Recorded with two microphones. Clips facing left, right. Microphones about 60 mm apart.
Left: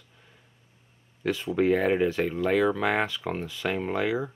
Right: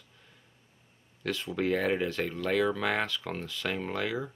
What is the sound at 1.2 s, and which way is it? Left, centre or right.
Speech, centre.